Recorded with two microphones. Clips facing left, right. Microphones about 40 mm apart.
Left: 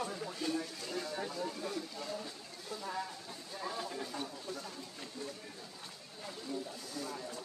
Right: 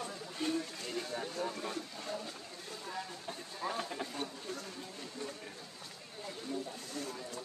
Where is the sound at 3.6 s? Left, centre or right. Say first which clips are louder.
Right 2 dB; right.